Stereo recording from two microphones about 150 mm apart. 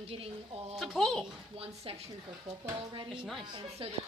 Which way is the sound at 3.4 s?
30° right (ahead or behind).